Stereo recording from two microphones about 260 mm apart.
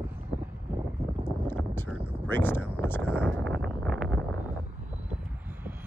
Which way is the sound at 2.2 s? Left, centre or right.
Centre.